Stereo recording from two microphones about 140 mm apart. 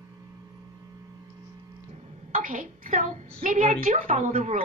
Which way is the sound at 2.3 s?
70° right (ahead or behind).